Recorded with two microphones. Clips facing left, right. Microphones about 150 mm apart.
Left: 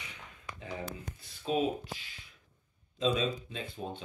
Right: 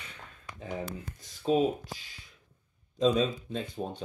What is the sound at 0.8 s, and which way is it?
Speech, 40° right (ahead or behind).